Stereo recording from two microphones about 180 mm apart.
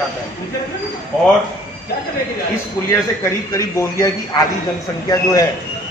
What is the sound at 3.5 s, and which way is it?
Speech, 15° left (ahead or behind).